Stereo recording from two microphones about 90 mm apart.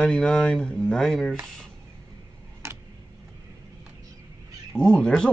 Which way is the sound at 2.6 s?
30° right (ahead or behind).